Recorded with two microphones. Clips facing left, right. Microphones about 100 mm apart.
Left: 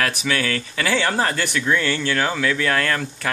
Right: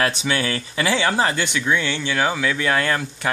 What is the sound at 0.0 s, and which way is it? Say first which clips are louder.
Speech: right 1 dB; 25° right (ahead or behind).